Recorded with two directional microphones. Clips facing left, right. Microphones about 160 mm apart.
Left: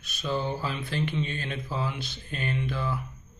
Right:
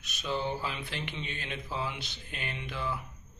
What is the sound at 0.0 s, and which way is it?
Speech, 15° right (ahead or behind).